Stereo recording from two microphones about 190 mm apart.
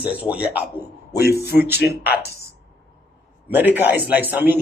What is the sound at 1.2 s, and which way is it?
Throat clearing, 55° left (ahead or behind).